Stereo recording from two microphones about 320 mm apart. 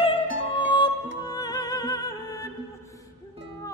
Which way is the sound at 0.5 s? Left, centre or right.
Centre.